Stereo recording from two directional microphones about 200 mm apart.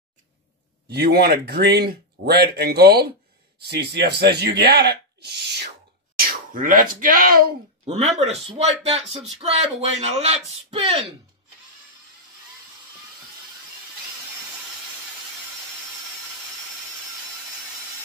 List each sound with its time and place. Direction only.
0.8 s speech: 50° right (ahead or behind)
6.1 s speech: 45° right (ahead or behind)
7.8 s speech: 30° right (ahead or behind)